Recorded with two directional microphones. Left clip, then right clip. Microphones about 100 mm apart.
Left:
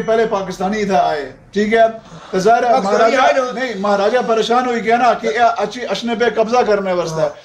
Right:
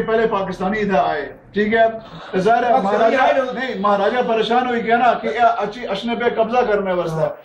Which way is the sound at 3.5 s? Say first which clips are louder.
Left 1 dB; 45° left (ahead or behind).